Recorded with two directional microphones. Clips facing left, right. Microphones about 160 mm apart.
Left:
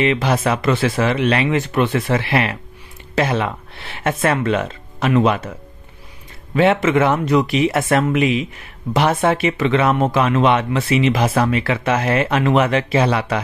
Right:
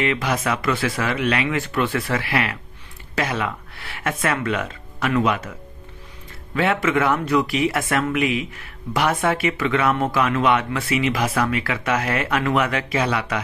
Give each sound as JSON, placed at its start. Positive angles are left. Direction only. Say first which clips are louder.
{"t": 0.0, "sound": "speech", "louder": "left 5 dB", "side_deg": 25}
{"t": 6.5, "sound": "speech", "louder": "left 5 dB", "side_deg": 25}